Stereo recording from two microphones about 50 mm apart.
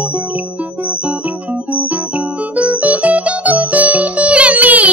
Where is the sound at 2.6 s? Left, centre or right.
Right.